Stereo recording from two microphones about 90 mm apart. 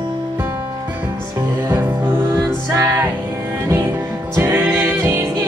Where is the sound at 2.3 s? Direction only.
35° right (ahead or behind).